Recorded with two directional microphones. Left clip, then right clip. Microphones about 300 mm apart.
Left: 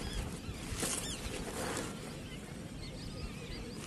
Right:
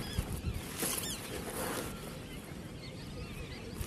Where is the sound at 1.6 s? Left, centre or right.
Centre.